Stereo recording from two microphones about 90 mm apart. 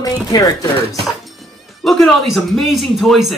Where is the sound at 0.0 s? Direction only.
45° left (ahead or behind).